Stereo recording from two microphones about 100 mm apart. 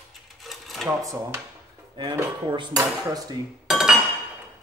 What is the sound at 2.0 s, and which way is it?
Speech, 55° right (ahead or behind).